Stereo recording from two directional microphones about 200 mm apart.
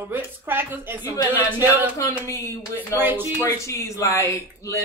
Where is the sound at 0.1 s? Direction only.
10° right (ahead or behind).